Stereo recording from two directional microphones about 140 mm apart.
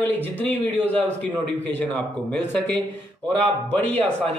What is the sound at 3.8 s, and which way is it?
Speech, 50° right (ahead or behind).